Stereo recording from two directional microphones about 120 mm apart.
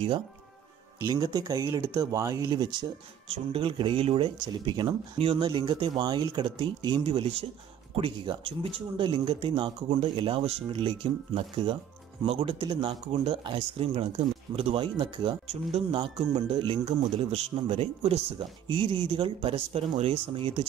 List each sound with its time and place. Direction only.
1.0 s speech: 35° right (ahead or behind)
3.3 s speech: 45° right (ahead or behind)
7.0 s speech: 50° right (ahead or behind)
15.0 s speech: 40° right (ahead or behind)
15.4 s speech: 65° right (ahead or behind)
15.9 s speech: 45° right (ahead or behind)